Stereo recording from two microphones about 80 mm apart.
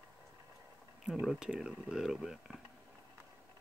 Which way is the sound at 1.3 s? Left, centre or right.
Centre.